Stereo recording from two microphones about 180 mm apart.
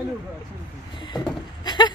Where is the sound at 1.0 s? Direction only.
25° left (ahead or behind).